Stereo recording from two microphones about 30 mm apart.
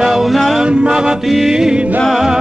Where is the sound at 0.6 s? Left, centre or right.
Right.